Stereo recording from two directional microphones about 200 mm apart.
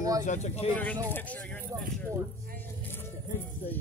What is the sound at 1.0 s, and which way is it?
Speech, 10° left (ahead or behind).